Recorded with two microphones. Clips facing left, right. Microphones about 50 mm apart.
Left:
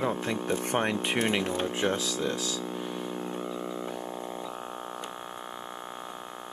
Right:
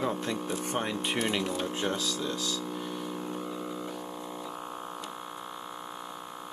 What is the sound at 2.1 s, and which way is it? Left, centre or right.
Speech, left.